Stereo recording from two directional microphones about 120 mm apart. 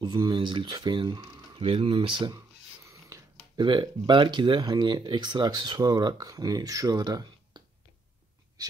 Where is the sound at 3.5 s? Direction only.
40° right (ahead or behind).